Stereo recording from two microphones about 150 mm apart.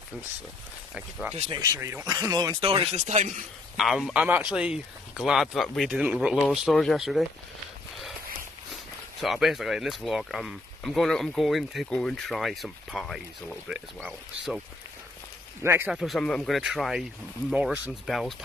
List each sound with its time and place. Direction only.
1.3 s speech: 45° right (ahead or behind)
1.6 s speech: 20° right (ahead or behind); by 3.4 s 55° right (ahead or behind)
3.7 s speech: centre (ahead or behind)
9.2 s speech: centre (ahead or behind)
15.6 s speech: 15° right (ahead or behind)
15.9 s speech: centre (ahead or behind)